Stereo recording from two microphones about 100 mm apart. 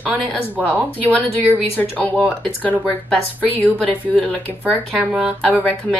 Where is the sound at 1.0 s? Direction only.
15° left (ahead or behind).